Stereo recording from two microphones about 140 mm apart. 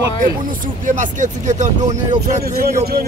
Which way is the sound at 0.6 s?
70° right (ahead or behind).